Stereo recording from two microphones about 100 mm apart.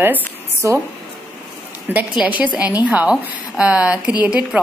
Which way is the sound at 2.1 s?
15° right (ahead or behind).